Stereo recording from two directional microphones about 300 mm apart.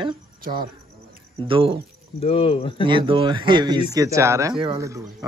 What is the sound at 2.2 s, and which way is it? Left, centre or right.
Speech, centre.